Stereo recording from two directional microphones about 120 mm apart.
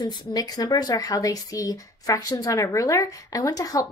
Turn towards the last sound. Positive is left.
turn(degrees=30)  # may be behind; listen again after turning